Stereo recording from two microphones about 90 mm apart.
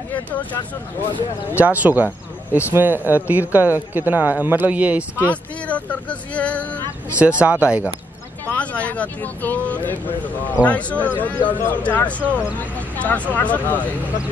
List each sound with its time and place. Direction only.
1.6 s speech: 20° right (ahead or behind)
5.2 s speech: 15° left (ahead or behind)
7.1 s speech: 15° right (ahead or behind)
8.5 s speech: 15° left (ahead or behind)